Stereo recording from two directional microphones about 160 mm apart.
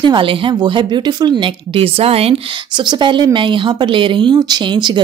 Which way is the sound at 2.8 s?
30° right (ahead or behind).